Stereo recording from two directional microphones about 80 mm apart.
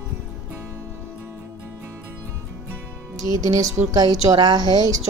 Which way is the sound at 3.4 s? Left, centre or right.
Right.